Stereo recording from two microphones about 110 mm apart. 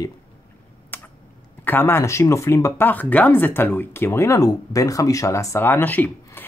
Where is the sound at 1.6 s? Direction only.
20° left (ahead or behind).